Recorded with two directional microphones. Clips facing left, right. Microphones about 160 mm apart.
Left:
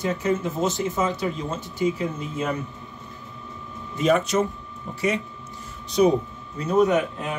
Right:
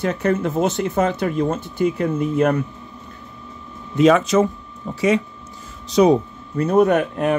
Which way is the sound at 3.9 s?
90° right.